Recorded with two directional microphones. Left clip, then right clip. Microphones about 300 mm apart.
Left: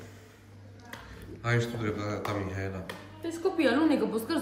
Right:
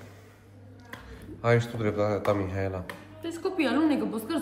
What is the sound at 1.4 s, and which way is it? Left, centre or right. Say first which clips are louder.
Speech: right 6 dB; centre.